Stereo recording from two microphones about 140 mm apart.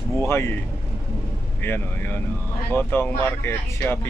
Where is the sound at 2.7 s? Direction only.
15° left (ahead or behind).